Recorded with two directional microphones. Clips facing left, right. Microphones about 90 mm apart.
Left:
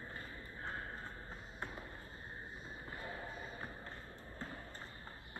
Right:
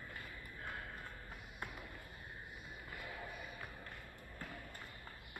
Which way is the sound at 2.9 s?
30° left (ahead or behind).